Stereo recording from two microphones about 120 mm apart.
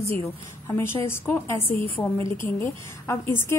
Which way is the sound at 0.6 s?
20° left (ahead or behind).